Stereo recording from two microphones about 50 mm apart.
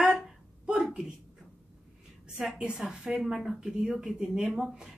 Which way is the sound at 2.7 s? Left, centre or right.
Centre.